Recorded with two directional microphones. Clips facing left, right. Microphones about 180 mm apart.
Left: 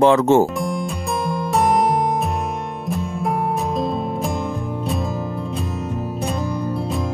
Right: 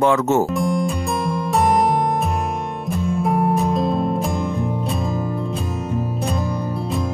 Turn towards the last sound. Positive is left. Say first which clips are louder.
# even
turn(degrees=0)  # may be behind; listen again after turning